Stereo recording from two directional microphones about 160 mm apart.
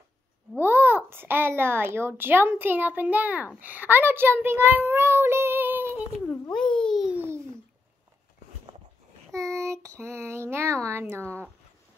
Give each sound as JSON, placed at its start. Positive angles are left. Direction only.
{"t": 0.7, "sound": "a child's voice", "side_deg": -15}
{"t": 6.2, "sound": "a sound", "side_deg": 10}
{"t": 9.3, "sound": "speech", "side_deg": -20}